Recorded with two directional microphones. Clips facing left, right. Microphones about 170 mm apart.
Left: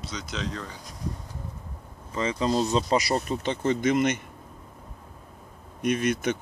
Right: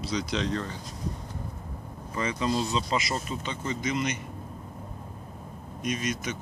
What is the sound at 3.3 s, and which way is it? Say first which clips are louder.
Speech: left 7 dB; 55° left (ahead or behind).